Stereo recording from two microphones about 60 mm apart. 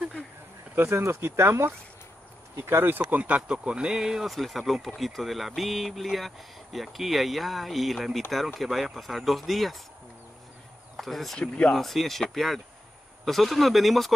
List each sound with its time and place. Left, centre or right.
0.7 s speech: right; by 9.8 s centre
11.0 s speech: centre
11.3 s speech: centre
11.7 s speech: centre